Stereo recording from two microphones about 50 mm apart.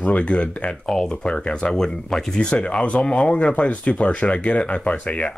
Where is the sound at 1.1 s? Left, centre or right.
Left.